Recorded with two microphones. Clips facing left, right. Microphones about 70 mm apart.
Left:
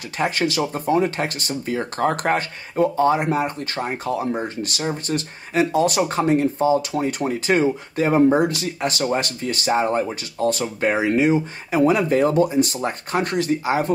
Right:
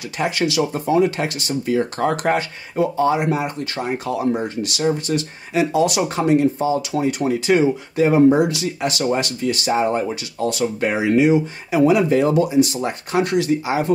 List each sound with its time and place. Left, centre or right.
0.2 s speech: left